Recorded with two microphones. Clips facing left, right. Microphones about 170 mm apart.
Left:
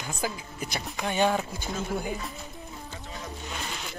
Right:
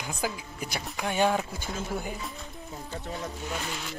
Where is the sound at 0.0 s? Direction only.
10° right (ahead or behind).